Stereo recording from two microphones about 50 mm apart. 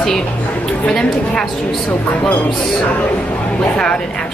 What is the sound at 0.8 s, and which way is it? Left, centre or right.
Speech, centre.